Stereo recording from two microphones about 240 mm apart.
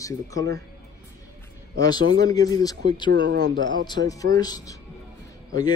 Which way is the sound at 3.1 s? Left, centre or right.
Right.